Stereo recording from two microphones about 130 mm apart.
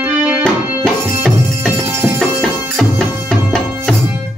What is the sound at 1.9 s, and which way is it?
Music, 10° right (ahead or behind).